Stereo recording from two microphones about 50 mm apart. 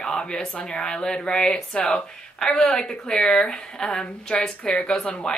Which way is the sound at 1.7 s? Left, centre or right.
Left.